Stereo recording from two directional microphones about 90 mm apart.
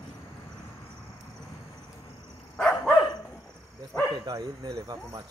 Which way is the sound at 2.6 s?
10° left (ahead or behind).